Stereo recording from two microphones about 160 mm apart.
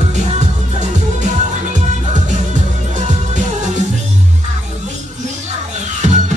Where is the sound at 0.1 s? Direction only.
45° right (ahead or behind).